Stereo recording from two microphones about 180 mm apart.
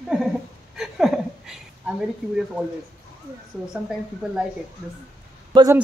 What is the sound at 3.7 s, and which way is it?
Speech, 5° right (ahead or behind).